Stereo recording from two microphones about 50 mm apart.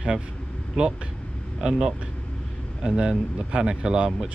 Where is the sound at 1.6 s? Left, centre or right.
Centre.